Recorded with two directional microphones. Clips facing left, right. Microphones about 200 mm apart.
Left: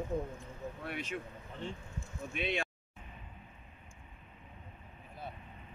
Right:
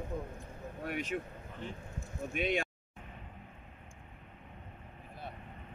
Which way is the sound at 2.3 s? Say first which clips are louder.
Right 3 dB; 45° right (ahead or behind).